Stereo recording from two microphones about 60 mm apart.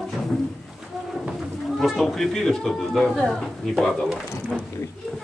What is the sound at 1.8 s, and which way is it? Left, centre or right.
Speech, centre.